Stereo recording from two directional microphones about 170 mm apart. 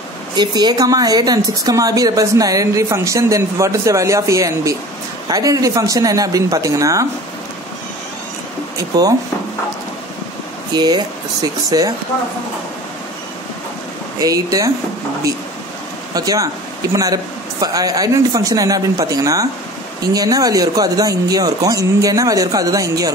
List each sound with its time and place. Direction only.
0.4 s speech: 25° right (ahead or behind)
8.7 s speech: 20° right (ahead or behind)
10.7 s speech: 25° right (ahead or behind)
14.2 s speech: 20° right (ahead or behind)
16.2 s speech: 20° right (ahead or behind)